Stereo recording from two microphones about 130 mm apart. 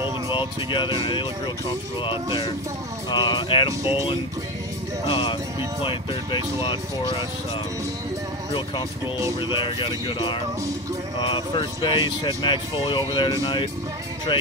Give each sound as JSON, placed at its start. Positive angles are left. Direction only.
{"t": 0.3, "sound": "speech", "side_deg": 40}
{"t": 5.0, "sound": "speech", "side_deg": 40}
{"t": 9.4, "sound": "speech", "side_deg": 40}